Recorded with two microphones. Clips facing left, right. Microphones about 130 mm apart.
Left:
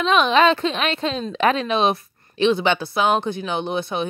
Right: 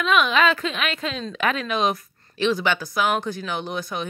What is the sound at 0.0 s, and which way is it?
A woman's voice, 35° left (ahead or behind).